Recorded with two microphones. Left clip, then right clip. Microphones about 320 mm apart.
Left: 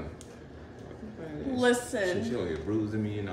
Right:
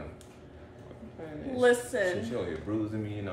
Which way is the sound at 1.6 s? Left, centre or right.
Centre.